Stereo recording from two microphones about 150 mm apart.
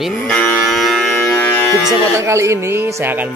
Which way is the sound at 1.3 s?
15° left (ahead or behind).